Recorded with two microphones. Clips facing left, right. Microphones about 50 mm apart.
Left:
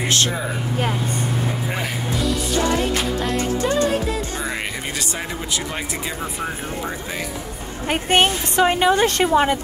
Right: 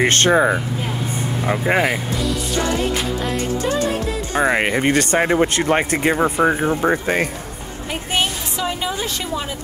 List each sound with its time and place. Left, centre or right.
0.0 s speech: right
4.4 s speech: right
7.9 s a woman's voice: left